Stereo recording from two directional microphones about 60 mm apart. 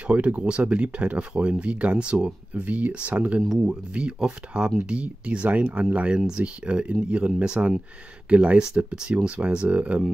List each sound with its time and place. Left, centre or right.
0.0 s speech: right